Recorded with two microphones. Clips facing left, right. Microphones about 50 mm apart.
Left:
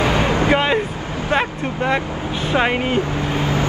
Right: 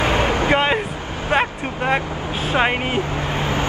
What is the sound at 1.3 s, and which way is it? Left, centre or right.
Vehicle, centre.